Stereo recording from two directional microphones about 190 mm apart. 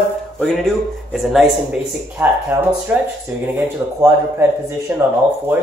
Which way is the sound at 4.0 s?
15° right (ahead or behind).